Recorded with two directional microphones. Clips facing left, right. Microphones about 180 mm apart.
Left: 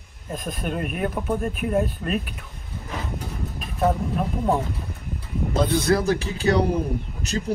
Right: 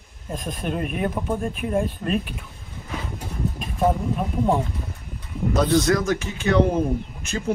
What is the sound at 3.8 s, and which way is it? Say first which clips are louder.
Speech: right 1 dB; centre (ahead or behind).